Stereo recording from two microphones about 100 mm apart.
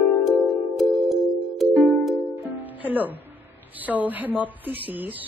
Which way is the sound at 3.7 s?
15° right (ahead or behind).